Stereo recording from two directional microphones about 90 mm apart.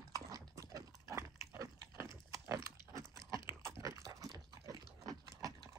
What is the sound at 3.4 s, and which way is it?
Dog, 30° right (ahead or behind).